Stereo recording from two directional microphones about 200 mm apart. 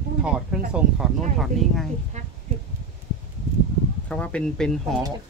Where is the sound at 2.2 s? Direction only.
35° right (ahead or behind).